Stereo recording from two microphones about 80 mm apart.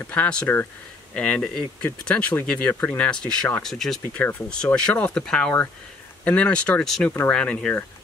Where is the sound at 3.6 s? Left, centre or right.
Centre.